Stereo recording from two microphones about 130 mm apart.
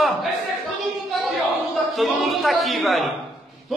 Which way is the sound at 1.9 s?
Centre (ahead or behind).